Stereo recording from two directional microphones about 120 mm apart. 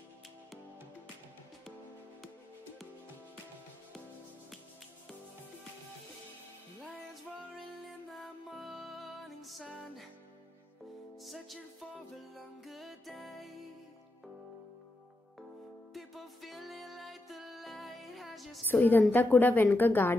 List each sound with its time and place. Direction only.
8.1 s music: centre (ahead or behind)
11.2 s music: centre (ahead or behind)
15.9 s music: centre (ahead or behind)
18.7 s a woman's voice: 15° left (ahead or behind)